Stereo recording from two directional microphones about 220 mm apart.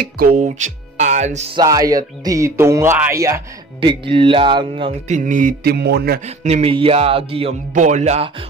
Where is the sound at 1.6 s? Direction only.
15° right (ahead or behind).